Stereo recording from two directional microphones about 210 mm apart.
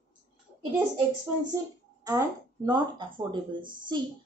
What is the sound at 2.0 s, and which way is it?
Speech, 20° right (ahead or behind).